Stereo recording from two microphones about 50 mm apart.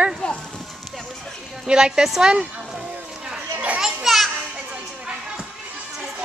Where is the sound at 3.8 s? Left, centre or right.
Centre.